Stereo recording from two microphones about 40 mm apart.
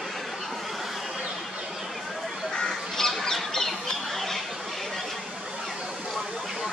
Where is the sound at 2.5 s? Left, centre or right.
Left.